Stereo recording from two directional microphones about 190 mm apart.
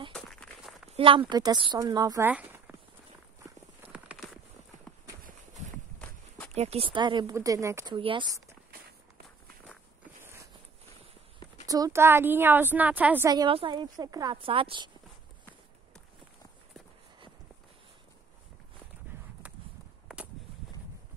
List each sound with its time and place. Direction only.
0.1 s walk: 5° left (ahead or behind)
0.9 s a woman's voice: 30° right (ahead or behind); by 2.7 s 10° right (ahead or behind)
3.4 s clip-clop: 10° right (ahead or behind)
6.5 s a woman's voice: 35° right (ahead or behind); by 7.9 s 15° right (ahead or behind)
7.9 s a woman's voice: 25° right (ahead or behind)
10.2 s a sound: 15° right (ahead or behind)
11.6 s a woman's voice: 20° right (ahead or behind)
13.3 s a woman's voice: 25° right (ahead or behind)